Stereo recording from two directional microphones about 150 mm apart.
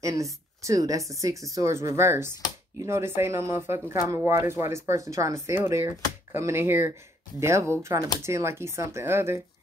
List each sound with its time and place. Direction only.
0.0 s speech: 20° right (ahead or behind)